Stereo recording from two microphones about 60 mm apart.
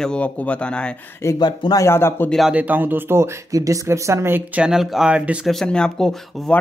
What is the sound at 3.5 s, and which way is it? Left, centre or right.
Speech, right.